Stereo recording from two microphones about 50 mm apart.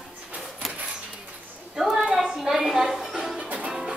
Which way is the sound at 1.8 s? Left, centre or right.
Centre.